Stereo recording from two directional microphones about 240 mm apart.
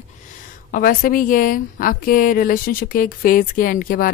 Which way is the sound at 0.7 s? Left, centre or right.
Left.